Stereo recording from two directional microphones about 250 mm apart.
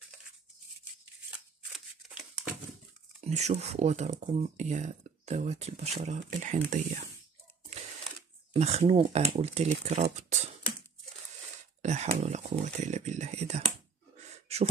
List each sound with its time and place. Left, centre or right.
1.7 s a sound: centre
3.3 s speech: right
8.5 s speech: right
10.0 s beatboxing: right
11.8 s speech: right
14.3 s gasp: right